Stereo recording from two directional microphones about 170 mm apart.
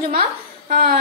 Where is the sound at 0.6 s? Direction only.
55° right (ahead or behind).